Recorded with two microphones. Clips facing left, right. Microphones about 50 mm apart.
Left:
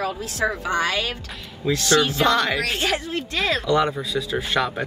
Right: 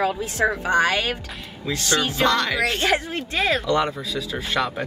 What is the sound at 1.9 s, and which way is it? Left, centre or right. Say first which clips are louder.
Speech: left 4 dB; centre.